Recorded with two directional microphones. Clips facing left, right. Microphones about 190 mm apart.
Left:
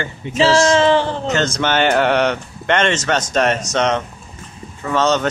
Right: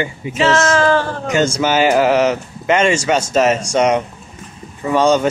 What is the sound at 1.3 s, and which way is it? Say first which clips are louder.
Speech: right 5 dB; 10° right (ahead or behind).